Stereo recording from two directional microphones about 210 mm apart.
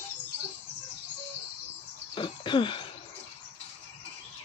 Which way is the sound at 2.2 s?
25° left (ahead or behind).